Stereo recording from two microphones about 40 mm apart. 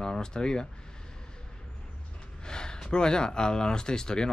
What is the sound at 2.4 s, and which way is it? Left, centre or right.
Speech, centre.